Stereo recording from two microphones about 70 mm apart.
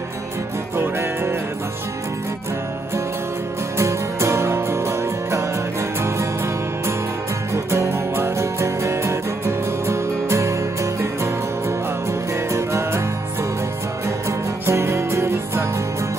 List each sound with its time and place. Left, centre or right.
0.7 s music: right
3.7 s music: right
7.5 s music: right
12.1 s music: right
14.7 s music: right